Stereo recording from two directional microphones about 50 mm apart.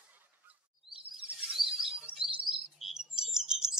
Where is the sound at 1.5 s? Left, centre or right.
Centre.